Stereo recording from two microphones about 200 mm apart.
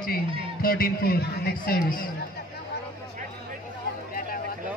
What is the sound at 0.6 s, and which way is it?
A man's voice, 45° left (ahead or behind).